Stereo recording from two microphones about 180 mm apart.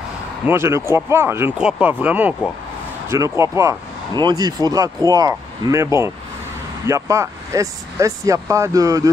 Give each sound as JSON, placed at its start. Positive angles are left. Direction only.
{"t": 0.5, "sound": "speech", "side_deg": -15}